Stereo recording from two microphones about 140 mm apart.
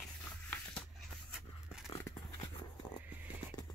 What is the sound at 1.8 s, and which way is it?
Dog, 20° left (ahead or behind).